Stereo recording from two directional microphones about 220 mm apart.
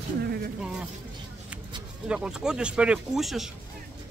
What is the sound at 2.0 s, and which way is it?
Speech, 5° right (ahead or behind).